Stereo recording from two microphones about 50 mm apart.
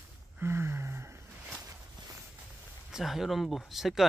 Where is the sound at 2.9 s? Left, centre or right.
Centre.